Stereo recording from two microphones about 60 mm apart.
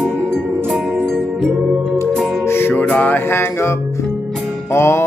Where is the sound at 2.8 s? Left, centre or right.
Left.